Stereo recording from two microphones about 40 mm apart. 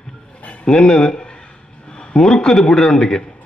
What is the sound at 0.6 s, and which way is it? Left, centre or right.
Speech, left.